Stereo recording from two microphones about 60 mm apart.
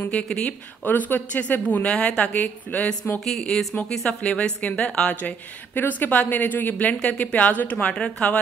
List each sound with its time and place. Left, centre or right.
0.1 s speech: centre
0.8 s speech: left
3.3 s speech: centre
4.2 s speech: centre